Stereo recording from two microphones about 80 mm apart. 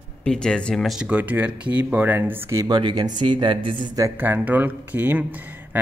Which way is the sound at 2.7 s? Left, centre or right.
Right.